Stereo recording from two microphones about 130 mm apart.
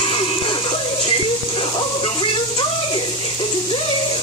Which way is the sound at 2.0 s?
40° left (ahead or behind).